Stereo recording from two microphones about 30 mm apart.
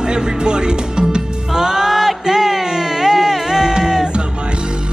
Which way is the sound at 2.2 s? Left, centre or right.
Centre.